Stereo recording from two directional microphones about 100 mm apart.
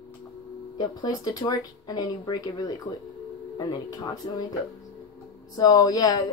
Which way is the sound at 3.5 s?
45° left (ahead or behind).